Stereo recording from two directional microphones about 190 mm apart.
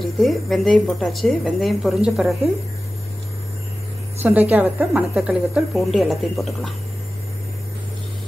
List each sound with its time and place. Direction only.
0.0 s a woman's voice: centre (ahead or behind)
4.2 s a woman's voice: 10° right (ahead or behind)